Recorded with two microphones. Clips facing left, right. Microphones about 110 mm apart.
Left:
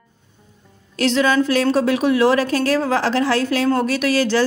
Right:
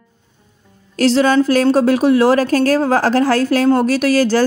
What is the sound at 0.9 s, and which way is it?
A woman's voice, 40° right (ahead or behind).